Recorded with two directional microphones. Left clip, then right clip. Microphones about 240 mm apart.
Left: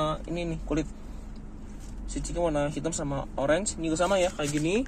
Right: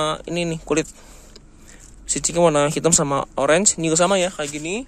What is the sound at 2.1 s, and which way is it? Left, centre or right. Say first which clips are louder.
Speech: right 11 dB; right.